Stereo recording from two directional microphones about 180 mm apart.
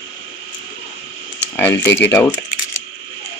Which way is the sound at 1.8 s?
75° left (ahead or behind).